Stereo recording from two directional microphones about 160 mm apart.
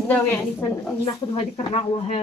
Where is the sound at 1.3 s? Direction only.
40° left (ahead or behind).